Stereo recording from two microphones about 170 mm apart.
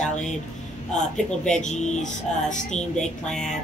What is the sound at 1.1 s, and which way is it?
Speech, 5° left (ahead or behind).